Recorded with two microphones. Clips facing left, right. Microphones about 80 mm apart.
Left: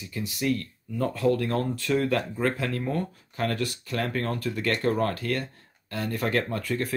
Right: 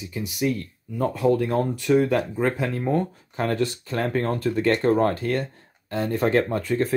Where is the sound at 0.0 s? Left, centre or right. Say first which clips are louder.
Right 4 dB; centre.